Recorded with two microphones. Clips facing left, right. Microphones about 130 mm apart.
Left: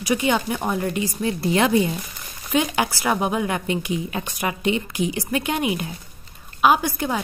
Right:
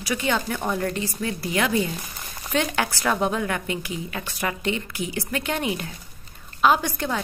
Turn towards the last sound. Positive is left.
turn(degrees=10)  # may be behind; listen again after turning